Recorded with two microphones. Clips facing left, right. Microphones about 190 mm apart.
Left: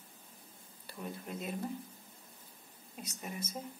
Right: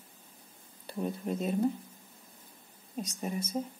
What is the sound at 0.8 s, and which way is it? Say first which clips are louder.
Speech: right 9 dB; 35° right (ahead or behind).